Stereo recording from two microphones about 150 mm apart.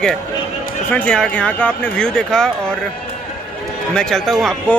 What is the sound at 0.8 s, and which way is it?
Speech, 10° left (ahead or behind).